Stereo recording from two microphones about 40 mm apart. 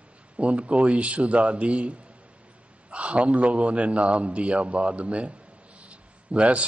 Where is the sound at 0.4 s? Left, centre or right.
Right.